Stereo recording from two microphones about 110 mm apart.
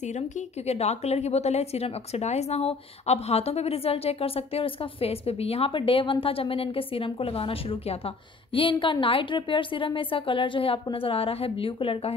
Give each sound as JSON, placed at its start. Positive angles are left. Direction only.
{"t": 0.7, "sound": "a woman's voice", "side_deg": 80}